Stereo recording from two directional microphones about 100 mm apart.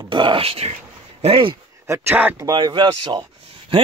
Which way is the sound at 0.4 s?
80° right.